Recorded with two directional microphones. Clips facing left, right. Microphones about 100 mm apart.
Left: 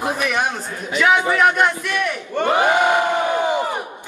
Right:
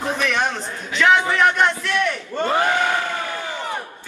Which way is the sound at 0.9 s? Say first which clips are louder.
Even; 5° left (ahead or behind).